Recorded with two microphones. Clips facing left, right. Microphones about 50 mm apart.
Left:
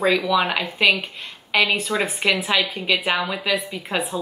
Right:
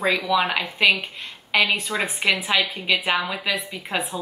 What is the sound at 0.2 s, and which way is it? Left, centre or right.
Speech, centre.